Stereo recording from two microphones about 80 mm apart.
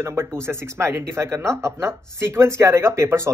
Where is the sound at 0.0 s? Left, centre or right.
Right.